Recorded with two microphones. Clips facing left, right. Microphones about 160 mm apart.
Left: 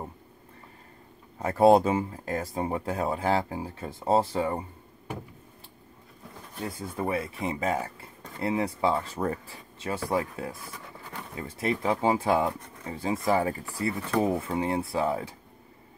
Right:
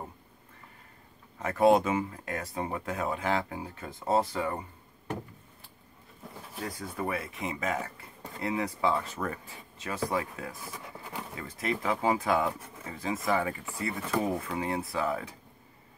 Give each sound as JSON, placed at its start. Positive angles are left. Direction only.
{"t": 1.4, "sound": "speech", "side_deg": 30}
{"t": 6.6, "sound": "speech", "side_deg": 25}
{"t": 10.6, "sound": "a sound", "side_deg": 0}
{"t": 11.3, "sound": "speech", "side_deg": 30}